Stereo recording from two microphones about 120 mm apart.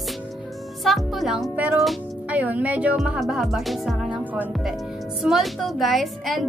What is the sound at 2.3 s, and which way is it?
A woman's voice, 10° right (ahead or behind).